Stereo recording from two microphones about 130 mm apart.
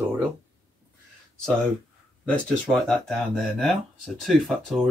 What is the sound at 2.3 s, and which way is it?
Speech, 5° left (ahead or behind).